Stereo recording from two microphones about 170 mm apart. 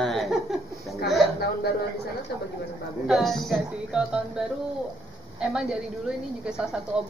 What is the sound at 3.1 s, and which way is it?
A woman's voice, centre (ahead or behind).